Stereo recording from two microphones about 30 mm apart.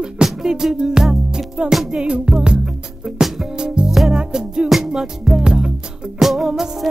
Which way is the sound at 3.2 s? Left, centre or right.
Centre.